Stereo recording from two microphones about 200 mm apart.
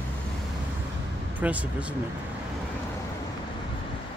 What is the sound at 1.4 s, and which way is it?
Speech, 5° right (ahead or behind).